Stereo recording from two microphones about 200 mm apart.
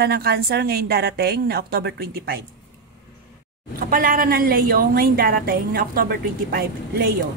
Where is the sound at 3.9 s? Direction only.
45° right (ahead or behind).